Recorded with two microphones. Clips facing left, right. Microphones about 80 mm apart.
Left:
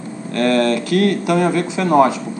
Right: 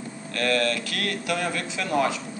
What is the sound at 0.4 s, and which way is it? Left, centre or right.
Speech, left.